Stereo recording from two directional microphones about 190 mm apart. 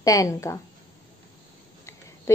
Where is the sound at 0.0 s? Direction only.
20° left (ahead or behind).